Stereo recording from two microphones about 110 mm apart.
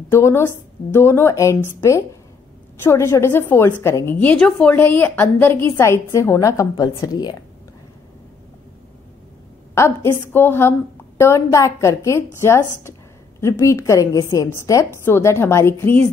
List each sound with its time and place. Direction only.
0.1 s a woman's voice: 20° left (ahead or behind)
4.7 s a woman's voice: 20° left (ahead or behind); by 7.3 s 35° left (ahead or behind)
9.8 s a woman's voice: 25° left (ahead or behind)